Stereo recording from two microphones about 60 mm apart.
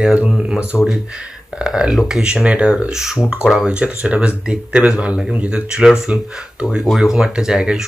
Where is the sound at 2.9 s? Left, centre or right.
Centre.